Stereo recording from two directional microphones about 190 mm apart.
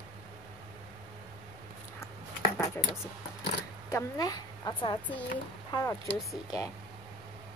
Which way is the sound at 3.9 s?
20° left (ahead or behind).